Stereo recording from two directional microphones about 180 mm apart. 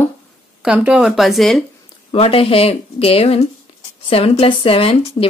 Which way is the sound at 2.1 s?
35° left (ahead or behind).